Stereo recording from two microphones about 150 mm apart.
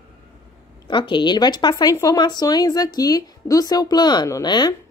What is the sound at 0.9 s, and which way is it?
Speech, 35° left (ahead or behind).